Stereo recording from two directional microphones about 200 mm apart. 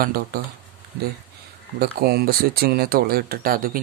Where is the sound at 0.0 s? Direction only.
50° right (ahead or behind).